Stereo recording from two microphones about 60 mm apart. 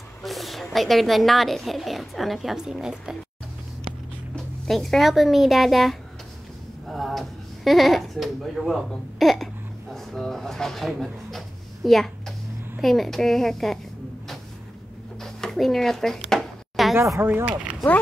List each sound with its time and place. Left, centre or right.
0.2 s a woman's voice: centre
4.6 s a woman's voice: centre
11.0 s a sound: centre
12.8 s a woman's voice: centre
15.1 s a sound: centre
17.2 s speech: right